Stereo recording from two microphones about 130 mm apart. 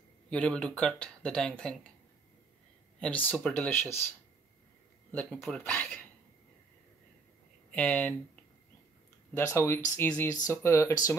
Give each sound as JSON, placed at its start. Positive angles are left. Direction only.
{"t": 0.3, "sound": "speech", "side_deg": 10}
{"t": 3.0, "sound": "speech", "side_deg": 10}
{"t": 5.1, "sound": "speech", "side_deg": 10}
{"t": 7.7, "sound": "speech", "side_deg": 10}
{"t": 9.3, "sound": "speech", "side_deg": 20}